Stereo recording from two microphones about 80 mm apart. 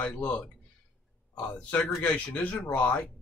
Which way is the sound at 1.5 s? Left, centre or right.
Centre.